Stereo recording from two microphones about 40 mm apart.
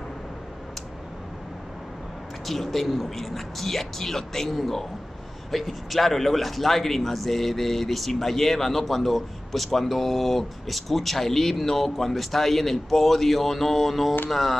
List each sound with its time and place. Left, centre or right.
2.4 s a man's voice: centre